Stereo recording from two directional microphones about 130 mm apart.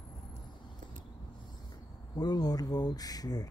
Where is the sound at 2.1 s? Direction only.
30° left (ahead or behind).